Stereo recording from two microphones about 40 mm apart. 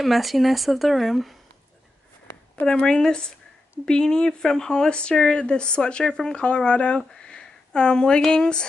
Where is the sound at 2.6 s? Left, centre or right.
Left.